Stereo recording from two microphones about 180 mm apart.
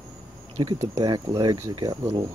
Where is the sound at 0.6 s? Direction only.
30° right (ahead or behind).